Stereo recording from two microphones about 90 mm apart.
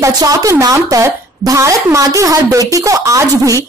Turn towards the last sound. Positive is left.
turn(degrees=-35)  # may be behind; listen again after turning